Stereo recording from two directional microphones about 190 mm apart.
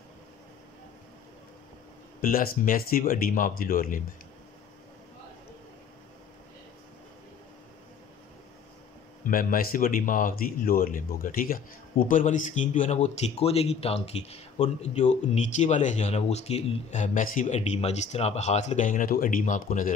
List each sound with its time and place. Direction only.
2.2 s speech: 45° left (ahead or behind)
9.2 s speech: 45° left (ahead or behind)